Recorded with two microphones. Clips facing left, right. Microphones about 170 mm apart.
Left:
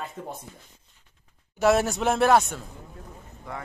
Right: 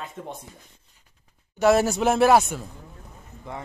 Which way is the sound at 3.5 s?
20° right (ahead or behind).